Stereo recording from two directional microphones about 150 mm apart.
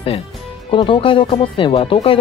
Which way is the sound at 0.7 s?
35° left (ahead or behind).